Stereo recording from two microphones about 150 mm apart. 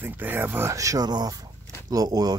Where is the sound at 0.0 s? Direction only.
10° right (ahead or behind).